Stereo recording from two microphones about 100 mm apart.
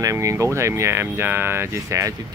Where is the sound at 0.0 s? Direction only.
35° right (ahead or behind).